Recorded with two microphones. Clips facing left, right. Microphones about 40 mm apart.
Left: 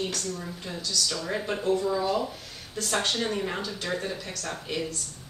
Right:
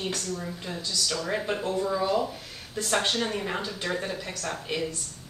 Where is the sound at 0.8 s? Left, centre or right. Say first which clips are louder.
Left 1 dB; right.